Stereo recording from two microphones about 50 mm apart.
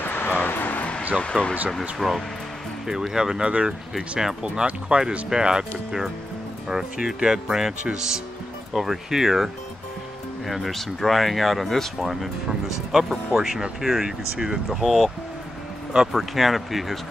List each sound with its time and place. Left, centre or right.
0.0 s vehicle: left
1.2 s speech: left
1.7 s speech: centre
2.9 s speech: centre
10.5 s speech: centre
12.9 s speech: centre
14.7 s speech: centre
16.1 s speech: centre